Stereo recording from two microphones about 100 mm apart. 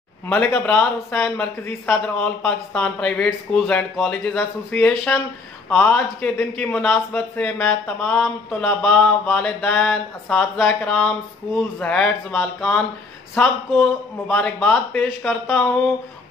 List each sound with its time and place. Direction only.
0.3 s a man's voice: 15° left (ahead or behind)